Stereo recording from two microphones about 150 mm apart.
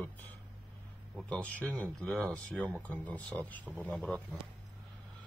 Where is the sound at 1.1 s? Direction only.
5° left (ahead or behind).